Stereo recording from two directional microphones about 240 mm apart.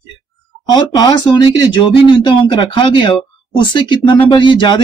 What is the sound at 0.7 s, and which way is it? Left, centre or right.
Speech, centre.